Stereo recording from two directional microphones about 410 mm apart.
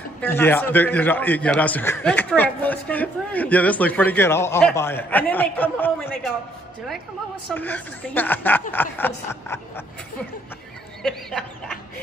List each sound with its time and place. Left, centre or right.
0.2 s a man's voice: centre
7.5 s a man's voice: centre
11.0 s a sound: centre